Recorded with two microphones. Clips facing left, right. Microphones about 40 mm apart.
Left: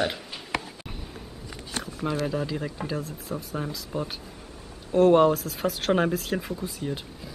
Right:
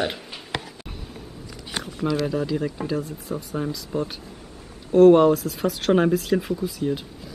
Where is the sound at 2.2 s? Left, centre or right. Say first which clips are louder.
Right 4 dB; centre.